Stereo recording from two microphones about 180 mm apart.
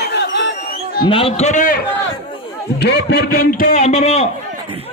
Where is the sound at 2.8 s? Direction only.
70° left (ahead or behind).